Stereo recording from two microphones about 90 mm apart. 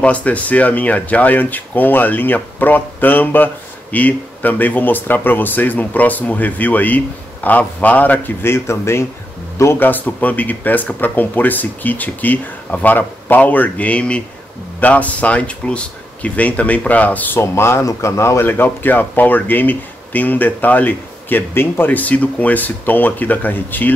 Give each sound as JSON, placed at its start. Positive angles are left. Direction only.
{"t": 0.0, "sound": "speech", "side_deg": 15}